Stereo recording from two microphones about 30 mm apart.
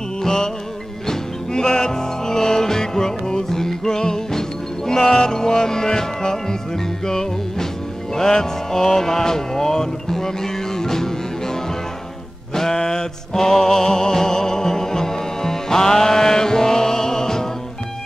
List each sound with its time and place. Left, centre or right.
0.2 s music: centre